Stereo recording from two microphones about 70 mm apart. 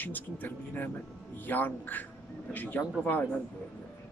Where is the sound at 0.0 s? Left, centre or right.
Left.